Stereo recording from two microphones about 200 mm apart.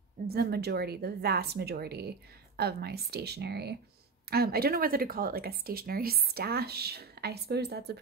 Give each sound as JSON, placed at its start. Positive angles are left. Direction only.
{"t": 0.3, "sound": "speech", "side_deg": -50}